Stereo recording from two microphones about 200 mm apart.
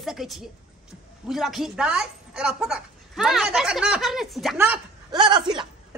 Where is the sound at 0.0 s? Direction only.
Centre (ahead or behind).